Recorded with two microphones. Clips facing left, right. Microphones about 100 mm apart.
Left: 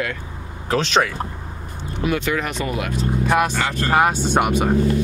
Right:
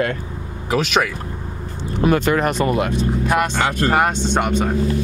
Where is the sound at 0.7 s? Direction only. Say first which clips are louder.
Even; 10° right (ahead or behind).